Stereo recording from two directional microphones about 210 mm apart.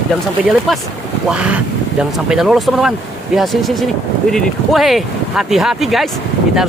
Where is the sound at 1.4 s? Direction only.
5° right (ahead or behind).